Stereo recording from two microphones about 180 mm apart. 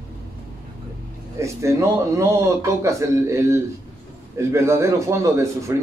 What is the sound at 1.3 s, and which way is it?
Speech, 15° right (ahead or behind).